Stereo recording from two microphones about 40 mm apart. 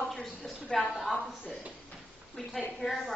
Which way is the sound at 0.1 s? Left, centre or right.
Centre.